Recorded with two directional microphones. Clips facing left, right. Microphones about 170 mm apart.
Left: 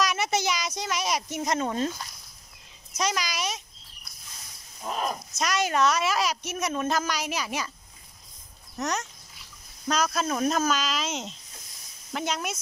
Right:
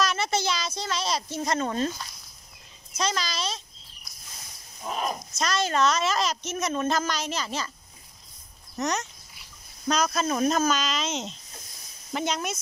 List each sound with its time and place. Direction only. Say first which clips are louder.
0.0 s a woman's voice: even; 15° left (ahead or behind)
3.0 s a woman's voice: even; 15° left (ahead or behind)
4.8 s speech: even; centre (ahead or behind)
5.4 s a woman's voice: even; 15° left (ahead or behind)
8.7 s speech: right 2 dB; 5° left (ahead or behind)